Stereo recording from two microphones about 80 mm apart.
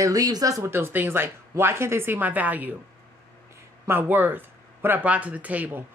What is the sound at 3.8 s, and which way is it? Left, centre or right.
Speech, right.